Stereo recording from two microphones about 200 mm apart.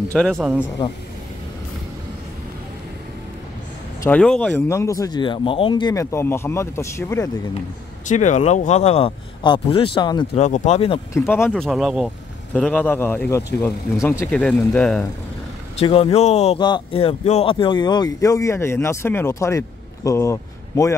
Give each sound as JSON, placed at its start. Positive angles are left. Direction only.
{"t": 0.1, "sound": "speech", "side_deg": 5}
{"t": 4.0, "sound": "speech", "side_deg": 5}
{"t": 8.1, "sound": "speech", "side_deg": 35}
{"t": 10.4, "sound": "speech", "side_deg": 35}
{"t": 11.1, "sound": "speech", "side_deg": 10}
{"t": 15.8, "sound": "a man's voice", "side_deg": 30}